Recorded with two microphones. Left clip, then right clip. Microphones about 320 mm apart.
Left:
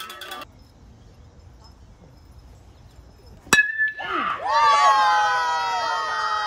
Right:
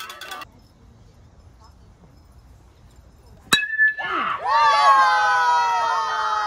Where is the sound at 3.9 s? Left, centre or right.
Centre.